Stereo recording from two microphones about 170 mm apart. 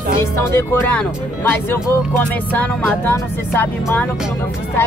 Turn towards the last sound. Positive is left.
turn(degrees=10)  # may be behind; listen again after turning